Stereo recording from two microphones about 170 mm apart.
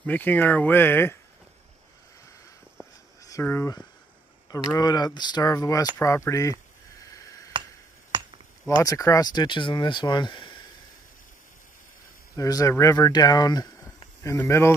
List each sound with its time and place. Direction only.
0.0 s speech: 10° left (ahead or behind)
3.2 s speech: 20° left (ahead or behind)
7.1 s tick: 20° left (ahead or behind)
8.1 s chop: 30° right (ahead or behind)
8.6 s speech: 20° left (ahead or behind)
12.4 s speech: 20° left (ahead or behind)